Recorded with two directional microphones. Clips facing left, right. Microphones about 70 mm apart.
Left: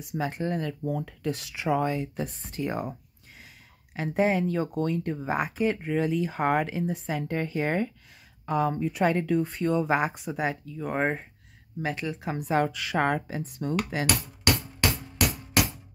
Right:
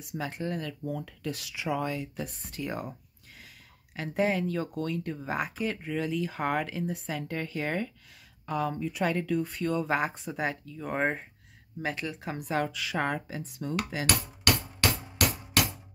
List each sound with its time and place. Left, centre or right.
0.0 s speech: left
8.7 s speech: left; by 12.4 s centre
12.4 s speech: left
12.6 s speech: left